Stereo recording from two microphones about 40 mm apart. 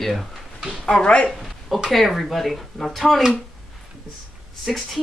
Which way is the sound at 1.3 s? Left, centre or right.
Centre.